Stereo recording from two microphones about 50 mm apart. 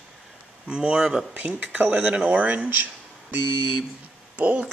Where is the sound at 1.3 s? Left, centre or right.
Right.